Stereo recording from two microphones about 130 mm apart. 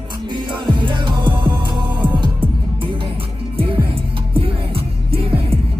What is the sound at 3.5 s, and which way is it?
Music, 45° right (ahead or behind).